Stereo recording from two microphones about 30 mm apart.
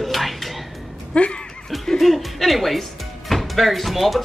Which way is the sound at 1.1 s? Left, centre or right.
Left.